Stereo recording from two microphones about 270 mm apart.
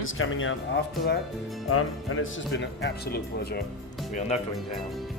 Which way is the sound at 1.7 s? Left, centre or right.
Left.